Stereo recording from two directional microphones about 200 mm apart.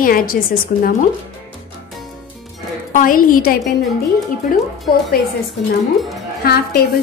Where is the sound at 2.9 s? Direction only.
45° left (ahead or behind).